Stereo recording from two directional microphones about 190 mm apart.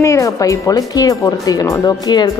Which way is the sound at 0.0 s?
15° left (ahead or behind).